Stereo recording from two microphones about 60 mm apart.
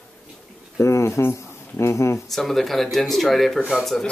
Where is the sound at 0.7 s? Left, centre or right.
Left.